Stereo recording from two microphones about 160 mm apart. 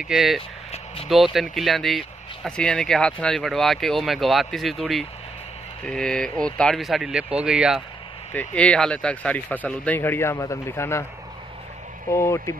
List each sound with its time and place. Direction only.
0.0 s speech: 5° right (ahead or behind)
8.3 s speech: 10° left (ahead or behind)
12.1 s speech: 15° left (ahead or behind)